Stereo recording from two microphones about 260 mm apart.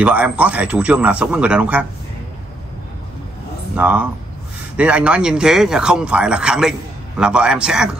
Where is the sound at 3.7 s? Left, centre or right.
Centre.